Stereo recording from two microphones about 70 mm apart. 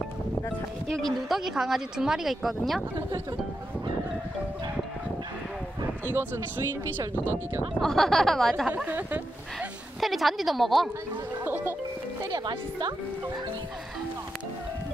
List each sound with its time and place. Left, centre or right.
0.8 s speech: centre
1.3 s speech: centre
6.0 s speech: right
7.8 s speech: centre
8.6 s speech: centre
8.9 s speech: right
9.9 s speech: centre
11.3 s music: right
12.3 s speech: right